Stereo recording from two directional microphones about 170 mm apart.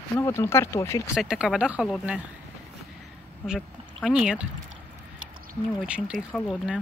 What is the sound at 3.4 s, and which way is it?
Speech, 5° right (ahead or behind).